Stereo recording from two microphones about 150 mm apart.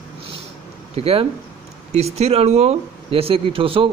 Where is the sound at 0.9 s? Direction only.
40° right (ahead or behind).